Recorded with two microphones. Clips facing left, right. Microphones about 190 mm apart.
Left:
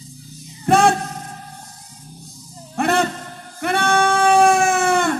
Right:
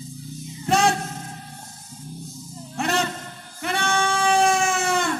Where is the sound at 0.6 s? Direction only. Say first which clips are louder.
Left 5 dB; 55° left (ahead or behind).